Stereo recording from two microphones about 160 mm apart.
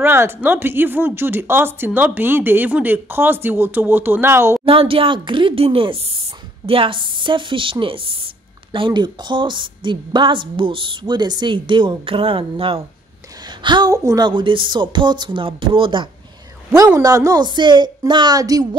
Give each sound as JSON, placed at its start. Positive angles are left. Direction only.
{"t": 0.0, "sound": "speech", "side_deg": -15}
{"t": 4.6, "sound": "a woman's voice", "side_deg": -35}
{"t": 17.0, "sound": "a woman's voice", "side_deg": -20}